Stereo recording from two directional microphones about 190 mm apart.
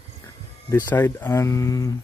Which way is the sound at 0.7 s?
10° left (ahead or behind).